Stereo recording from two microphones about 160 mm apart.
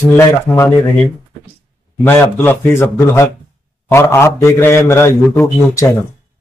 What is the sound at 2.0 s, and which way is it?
A man's voice, 15° left (ahead or behind).